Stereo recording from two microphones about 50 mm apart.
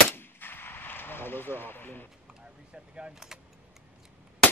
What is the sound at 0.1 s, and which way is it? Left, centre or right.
Gunshot, left.